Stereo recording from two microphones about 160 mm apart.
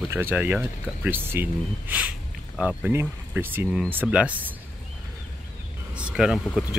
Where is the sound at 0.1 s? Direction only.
15° right (ahead or behind).